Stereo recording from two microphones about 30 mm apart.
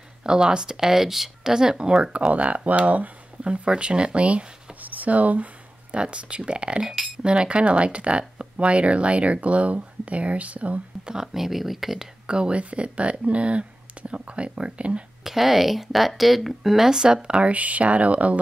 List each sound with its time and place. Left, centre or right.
0.2 s speech: right
0.7 s speech: centre
2.3 s speech: right
3.4 s speech: right
4.8 s speech: right
5.9 s speech: right
11.3 s speech: centre
12.3 s speech: right
12.5 s speech: right
15.2 s speech: centre
17.0 s speech: right
17.5 s speech: right